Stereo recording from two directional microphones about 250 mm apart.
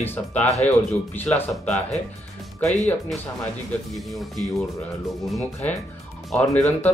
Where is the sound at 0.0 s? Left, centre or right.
Centre.